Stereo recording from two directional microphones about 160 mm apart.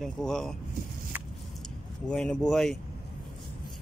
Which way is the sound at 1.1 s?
10° right (ahead or behind).